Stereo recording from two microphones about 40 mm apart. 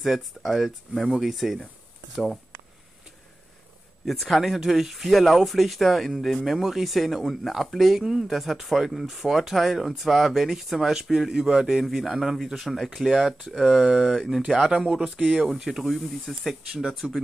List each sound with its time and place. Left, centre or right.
0.0 s speech: centre
4.0 s speech: centre
14.7 s speech: centre